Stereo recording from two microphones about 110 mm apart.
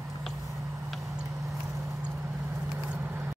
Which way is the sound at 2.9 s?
20° right (ahead or behind).